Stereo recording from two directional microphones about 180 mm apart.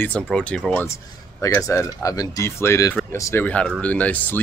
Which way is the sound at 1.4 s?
15° left (ahead or behind).